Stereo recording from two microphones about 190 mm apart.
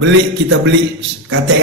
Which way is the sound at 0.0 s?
75° right (ahead or behind).